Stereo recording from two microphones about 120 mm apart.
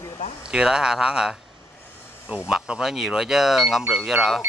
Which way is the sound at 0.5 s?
5° right (ahead or behind).